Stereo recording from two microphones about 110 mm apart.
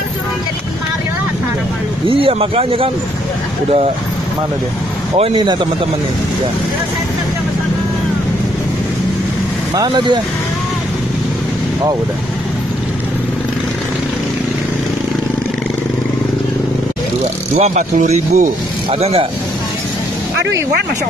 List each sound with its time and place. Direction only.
2.0 s speech: 55° right (ahead or behind)
5.1 s speech: 65° right (ahead or behind)
9.8 s speech: 40° right (ahead or behind)
17.6 s speech: 90° right
18.9 s speech: 65° right (ahead or behind)